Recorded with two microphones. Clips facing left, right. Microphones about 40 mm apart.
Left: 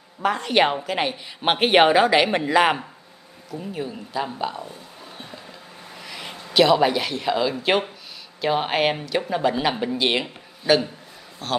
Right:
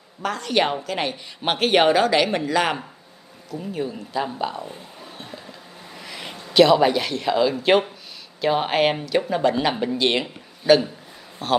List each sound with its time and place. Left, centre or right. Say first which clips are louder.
0.2 s a woman's voice: left 2 dB; centre
3.4 s speech: right 2 dB; centre
5.0 s a sound: right 1 dB; centre
5.9 s a man's voice: right 1 dB; centre